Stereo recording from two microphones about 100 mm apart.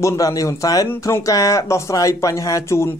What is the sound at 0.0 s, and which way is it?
Speech, 35° left (ahead or behind).